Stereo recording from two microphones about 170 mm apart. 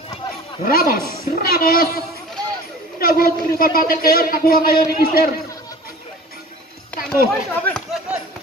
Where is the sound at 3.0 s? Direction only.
60° left (ahead or behind).